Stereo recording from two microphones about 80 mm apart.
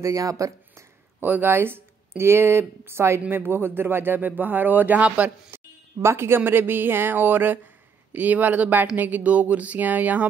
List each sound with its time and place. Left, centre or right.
0.0 s speech: right
1.2 s speech: right
5.5 s a sound: right
5.9 s speech: right